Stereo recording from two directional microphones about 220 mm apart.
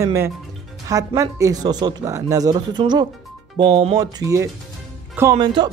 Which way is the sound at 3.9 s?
15° right (ahead or behind).